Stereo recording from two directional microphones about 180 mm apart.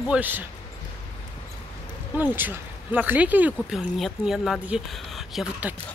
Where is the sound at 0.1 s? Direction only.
10° right (ahead or behind).